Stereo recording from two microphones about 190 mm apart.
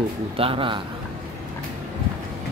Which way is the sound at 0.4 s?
30° right (ahead or behind).